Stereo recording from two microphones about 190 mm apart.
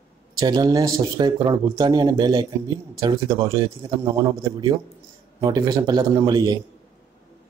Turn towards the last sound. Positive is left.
turn(degrees=-20)  # may be behind; listen again after turning